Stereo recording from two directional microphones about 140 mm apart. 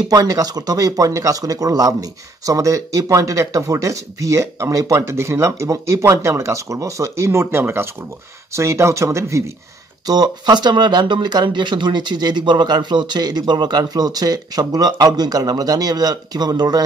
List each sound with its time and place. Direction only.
0.1 s speech: 25° right (ahead or behind)